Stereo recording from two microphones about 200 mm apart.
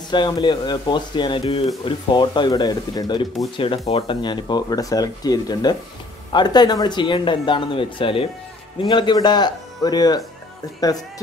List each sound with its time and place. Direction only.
0.1 s speech: 20° left (ahead or behind)